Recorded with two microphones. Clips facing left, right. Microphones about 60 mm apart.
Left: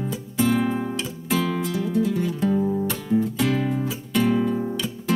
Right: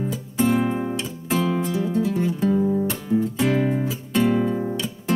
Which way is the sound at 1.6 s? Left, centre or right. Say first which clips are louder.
Right 1 dB; right.